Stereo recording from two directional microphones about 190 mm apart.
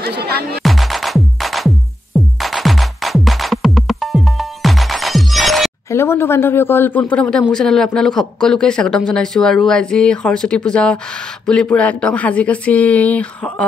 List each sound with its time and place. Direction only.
0.2 s music: 55° right (ahead or behind)
0.6 s music: centre (ahead or behind)
5.9 s speech: 15° left (ahead or behind)